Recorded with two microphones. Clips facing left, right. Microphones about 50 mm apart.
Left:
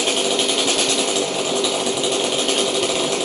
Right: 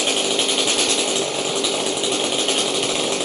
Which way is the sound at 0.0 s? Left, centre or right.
Centre.